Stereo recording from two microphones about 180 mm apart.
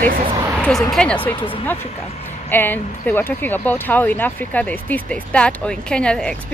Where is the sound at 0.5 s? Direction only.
Centre (ahead or behind).